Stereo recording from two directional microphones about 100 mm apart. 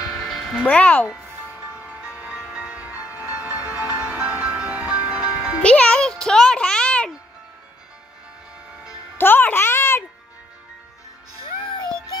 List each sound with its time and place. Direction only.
0.0 s music: centre (ahead or behind)
0.7 s speech: 15° left (ahead or behind)
1.7 s music: 15° right (ahead or behind)
5.6 s music: 10° left (ahead or behind)
9.2 s music: 20° left (ahead or behind)